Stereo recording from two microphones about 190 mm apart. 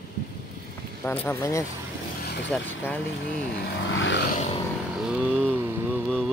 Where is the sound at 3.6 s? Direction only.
65° left (ahead or behind).